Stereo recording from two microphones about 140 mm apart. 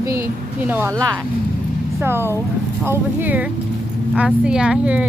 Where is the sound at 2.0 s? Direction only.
15° right (ahead or behind).